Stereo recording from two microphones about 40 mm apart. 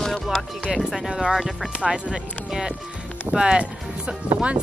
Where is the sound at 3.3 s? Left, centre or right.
Right.